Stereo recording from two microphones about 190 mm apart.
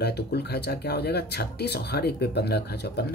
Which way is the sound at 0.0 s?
60° left (ahead or behind).